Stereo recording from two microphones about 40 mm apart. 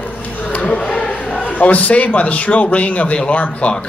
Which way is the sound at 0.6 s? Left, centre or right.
Left.